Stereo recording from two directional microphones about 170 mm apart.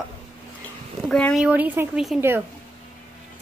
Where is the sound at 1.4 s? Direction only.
10° right (ahead or behind).